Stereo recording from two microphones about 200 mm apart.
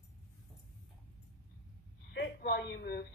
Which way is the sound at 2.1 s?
60° left (ahead or behind).